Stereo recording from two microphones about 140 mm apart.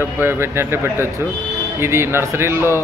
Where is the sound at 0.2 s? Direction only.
15° right (ahead or behind).